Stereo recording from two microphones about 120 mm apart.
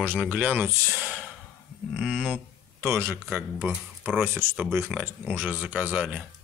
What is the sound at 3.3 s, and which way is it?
Speech, 10° right (ahead or behind).